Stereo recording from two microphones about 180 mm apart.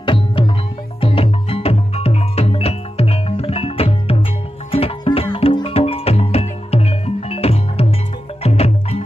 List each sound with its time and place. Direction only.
0.0 s music: 30° left (ahead or behind)